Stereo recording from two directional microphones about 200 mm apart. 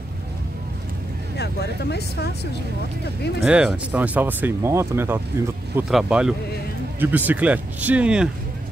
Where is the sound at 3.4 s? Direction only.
5° right (ahead or behind).